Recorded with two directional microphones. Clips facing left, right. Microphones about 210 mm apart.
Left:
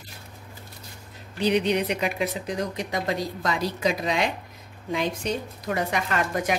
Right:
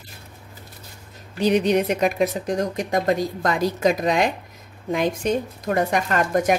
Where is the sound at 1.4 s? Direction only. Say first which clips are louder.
Right 4 dB; 45° right (ahead or behind).